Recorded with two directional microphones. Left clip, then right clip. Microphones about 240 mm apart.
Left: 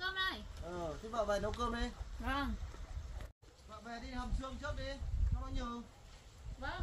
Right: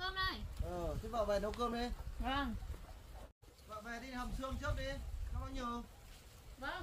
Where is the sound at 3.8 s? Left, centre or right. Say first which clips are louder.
Left 1 dB; right.